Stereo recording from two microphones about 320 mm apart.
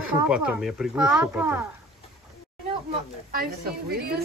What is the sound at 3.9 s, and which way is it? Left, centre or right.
Speech, right.